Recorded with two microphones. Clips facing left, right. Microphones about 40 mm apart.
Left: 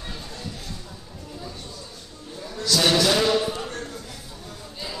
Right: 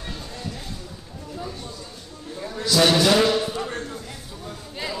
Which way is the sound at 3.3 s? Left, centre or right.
Centre.